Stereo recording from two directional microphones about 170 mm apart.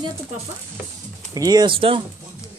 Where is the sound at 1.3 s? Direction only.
20° right (ahead or behind).